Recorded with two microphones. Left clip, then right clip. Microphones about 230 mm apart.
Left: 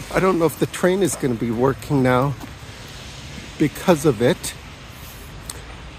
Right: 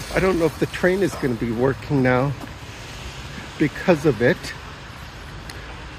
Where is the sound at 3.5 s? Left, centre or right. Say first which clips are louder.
Left 1 dB; centre.